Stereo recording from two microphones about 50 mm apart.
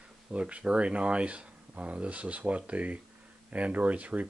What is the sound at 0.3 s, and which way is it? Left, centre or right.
Speech, right.